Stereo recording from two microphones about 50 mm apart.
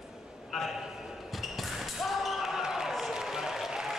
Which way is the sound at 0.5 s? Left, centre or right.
Centre.